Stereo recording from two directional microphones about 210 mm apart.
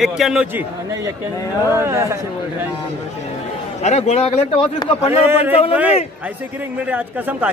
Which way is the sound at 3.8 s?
30° left (ahead or behind).